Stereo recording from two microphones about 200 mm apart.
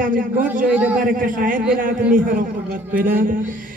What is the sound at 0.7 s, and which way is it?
Speech, 5° right (ahead or behind).